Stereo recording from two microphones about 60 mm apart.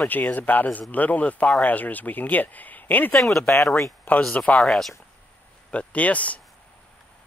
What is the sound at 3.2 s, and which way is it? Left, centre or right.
Speech, centre.